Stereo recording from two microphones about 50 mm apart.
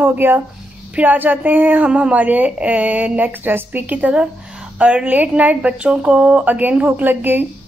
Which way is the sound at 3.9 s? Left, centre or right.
Right.